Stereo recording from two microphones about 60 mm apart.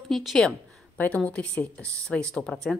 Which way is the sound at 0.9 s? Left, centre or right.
Left.